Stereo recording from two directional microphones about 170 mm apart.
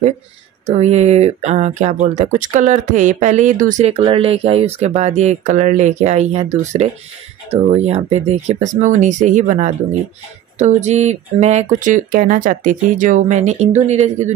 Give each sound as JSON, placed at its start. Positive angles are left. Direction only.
{"t": 0.7, "sound": "speech", "side_deg": -40}